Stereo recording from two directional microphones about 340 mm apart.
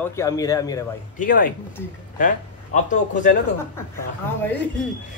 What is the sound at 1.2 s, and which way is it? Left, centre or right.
Speech, left.